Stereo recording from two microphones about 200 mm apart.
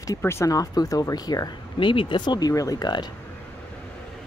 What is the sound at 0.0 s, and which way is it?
A woman's voice, 15° left (ahead or behind).